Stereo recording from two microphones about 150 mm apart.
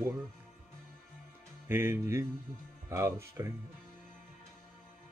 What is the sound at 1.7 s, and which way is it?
Speech, 15° right (ahead or behind).